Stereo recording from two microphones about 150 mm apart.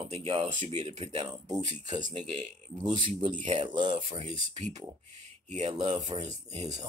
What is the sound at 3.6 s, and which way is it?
Speech, 30° right (ahead or behind).